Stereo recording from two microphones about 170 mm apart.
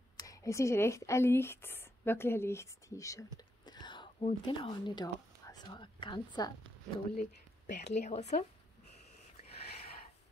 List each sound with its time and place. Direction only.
0.2 s speech: 20° left (ahead or behind)
7.2 s speech: 45° left (ahead or behind)